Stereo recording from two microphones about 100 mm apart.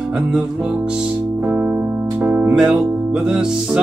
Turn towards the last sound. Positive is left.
turn(degrees=-5)  # may be behind; listen again after turning